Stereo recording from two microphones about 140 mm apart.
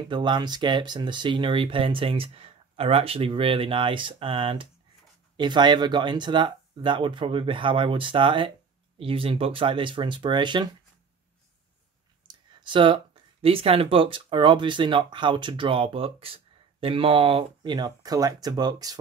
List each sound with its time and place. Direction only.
0.1 s speech: 35° right (ahead or behind)
12.3 s speech: 35° right (ahead or behind)